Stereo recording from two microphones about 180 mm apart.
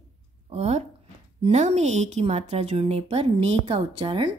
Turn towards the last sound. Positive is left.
turn(degrees=-30)  # may be behind; listen again after turning